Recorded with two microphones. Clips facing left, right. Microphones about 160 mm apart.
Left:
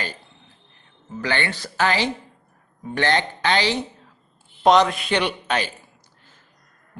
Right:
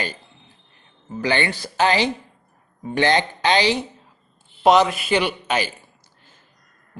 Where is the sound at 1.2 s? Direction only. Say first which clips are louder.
Right 3 dB; 15° right (ahead or behind).